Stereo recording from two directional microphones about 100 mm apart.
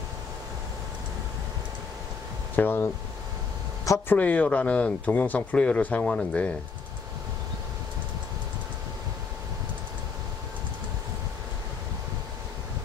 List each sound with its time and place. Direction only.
2.5 s speech: 20° left (ahead or behind)
4.1 s speech: 15° left (ahead or behind)